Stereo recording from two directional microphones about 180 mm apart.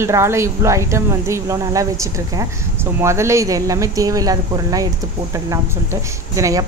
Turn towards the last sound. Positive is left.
turn(degrees=-15)  # may be behind; listen again after turning